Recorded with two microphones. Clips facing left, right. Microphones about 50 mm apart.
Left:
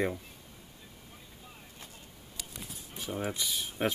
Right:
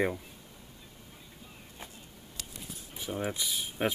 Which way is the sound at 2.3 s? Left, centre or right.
Centre.